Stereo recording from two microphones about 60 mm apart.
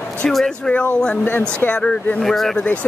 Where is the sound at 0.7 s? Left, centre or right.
Centre.